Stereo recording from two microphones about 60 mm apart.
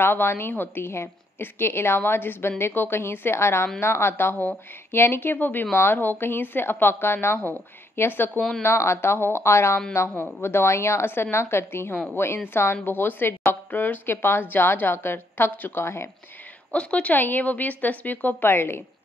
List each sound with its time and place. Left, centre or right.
0.0 s speech: left
8.4 s speech: centre
8.6 s a woman's voice: left
16.7 s a woman's voice: centre
17.1 s speech: left